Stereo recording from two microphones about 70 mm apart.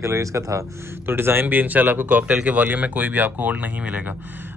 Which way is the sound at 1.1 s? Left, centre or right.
Right.